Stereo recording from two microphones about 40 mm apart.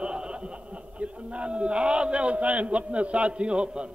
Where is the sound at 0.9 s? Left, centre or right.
Right.